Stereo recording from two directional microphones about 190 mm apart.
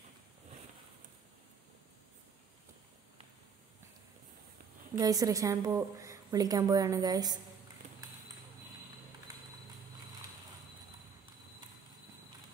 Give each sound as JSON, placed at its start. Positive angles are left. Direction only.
{"t": 4.9, "sound": "a woman's voice", "side_deg": -20}